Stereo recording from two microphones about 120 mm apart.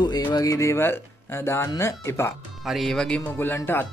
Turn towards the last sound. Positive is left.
turn(degrees=15)  # may be behind; listen again after turning